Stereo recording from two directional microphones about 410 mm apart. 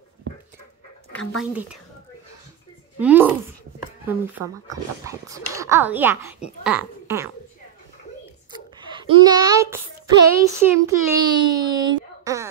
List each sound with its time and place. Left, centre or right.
3.0 s a child's voice: centre
8.5 s a child's voice: centre